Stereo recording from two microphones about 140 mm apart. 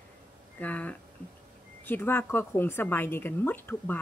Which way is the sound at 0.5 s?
10° left (ahead or behind).